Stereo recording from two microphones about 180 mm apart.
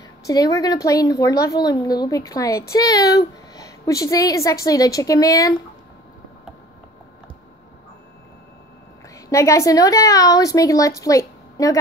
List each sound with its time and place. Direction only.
0.2 s a woman's voice: 20° left (ahead or behind)
9.3 s a woman's voice: 15° left (ahead or behind)